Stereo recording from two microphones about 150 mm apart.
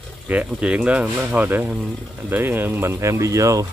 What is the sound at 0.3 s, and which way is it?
Speech, 10° right (ahead or behind).